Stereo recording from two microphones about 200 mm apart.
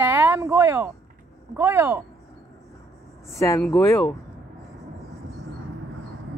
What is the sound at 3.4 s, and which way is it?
Speech, 15° left (ahead or behind).